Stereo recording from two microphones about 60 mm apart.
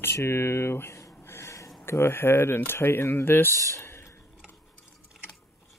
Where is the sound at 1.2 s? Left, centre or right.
Left.